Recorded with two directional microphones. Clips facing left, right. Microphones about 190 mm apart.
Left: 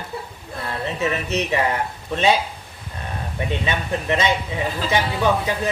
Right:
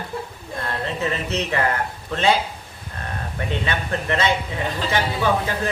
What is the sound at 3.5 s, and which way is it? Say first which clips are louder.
Speech: left 1 dB; 15° left (ahead or behind).